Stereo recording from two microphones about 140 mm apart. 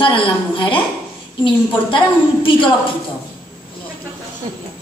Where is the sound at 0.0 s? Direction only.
35° left (ahead or behind).